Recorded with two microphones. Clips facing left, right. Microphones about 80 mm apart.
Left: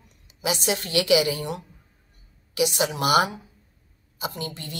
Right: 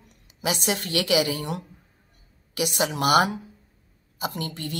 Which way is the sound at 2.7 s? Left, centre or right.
Right.